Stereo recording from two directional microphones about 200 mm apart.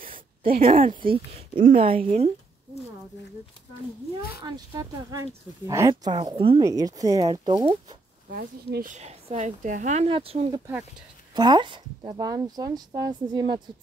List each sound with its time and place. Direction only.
0.4 s speech: 45° right (ahead or behind)
1.0 s speech: 25° right (ahead or behind)
4.4 s speech: 20° right (ahead or behind)
8.3 s speech: 50° right (ahead or behind)
8.9 s speech: 35° right (ahead or behind)